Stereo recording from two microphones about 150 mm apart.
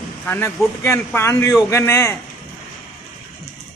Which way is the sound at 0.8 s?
15° left (ahead or behind).